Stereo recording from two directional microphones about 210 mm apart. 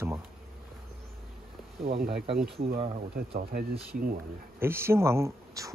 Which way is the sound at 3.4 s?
45° right (ahead or behind).